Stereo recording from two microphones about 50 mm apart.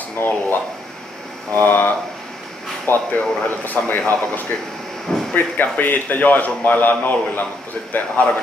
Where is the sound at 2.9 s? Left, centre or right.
Left.